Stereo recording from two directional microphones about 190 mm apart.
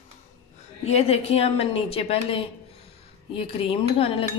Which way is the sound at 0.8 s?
35° left (ahead or behind).